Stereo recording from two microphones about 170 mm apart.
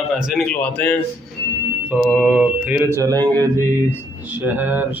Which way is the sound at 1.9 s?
10° right (ahead or behind).